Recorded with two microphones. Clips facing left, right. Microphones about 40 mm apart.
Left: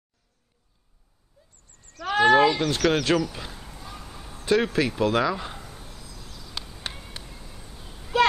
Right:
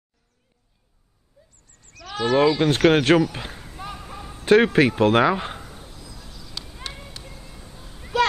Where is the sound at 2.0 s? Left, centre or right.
Left.